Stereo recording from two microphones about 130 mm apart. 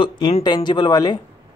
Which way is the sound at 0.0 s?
35° left (ahead or behind).